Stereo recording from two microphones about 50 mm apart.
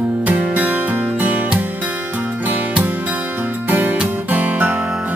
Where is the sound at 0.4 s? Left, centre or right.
Right.